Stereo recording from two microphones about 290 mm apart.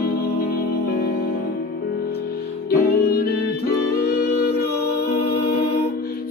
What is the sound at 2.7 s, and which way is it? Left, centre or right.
Music, left.